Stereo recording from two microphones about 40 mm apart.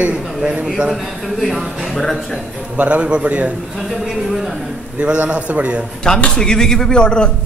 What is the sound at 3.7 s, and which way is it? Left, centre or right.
Speech, centre.